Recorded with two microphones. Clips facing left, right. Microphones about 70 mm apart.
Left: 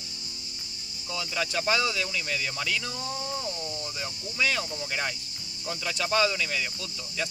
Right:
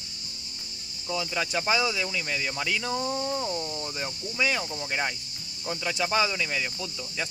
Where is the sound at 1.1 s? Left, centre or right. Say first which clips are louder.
Right 2 dB; centre.